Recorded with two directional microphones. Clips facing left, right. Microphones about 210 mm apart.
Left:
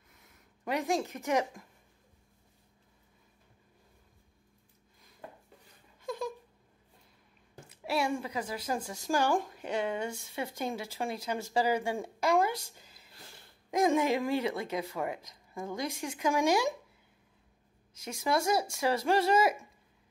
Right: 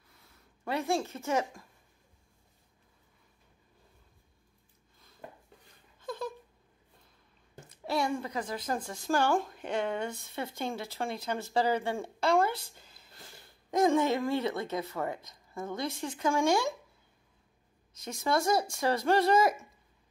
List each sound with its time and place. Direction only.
0.1 s speech: 20° left (ahead or behind)
5.9 s a sound: 15° left (ahead or behind)
7.7 s a woman's voice: 10° left (ahead or behind)
17.9 s a woman's voice: 10° left (ahead or behind)